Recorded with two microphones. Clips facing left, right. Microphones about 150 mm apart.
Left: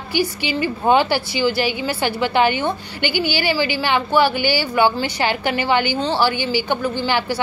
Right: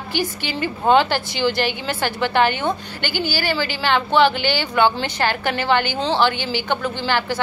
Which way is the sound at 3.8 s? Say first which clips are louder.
Right 2 dB; 10° left (ahead or behind).